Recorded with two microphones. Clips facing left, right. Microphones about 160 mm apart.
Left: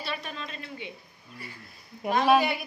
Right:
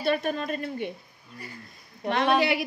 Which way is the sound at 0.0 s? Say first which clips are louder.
Right 10 dB; 50° right (ahead or behind).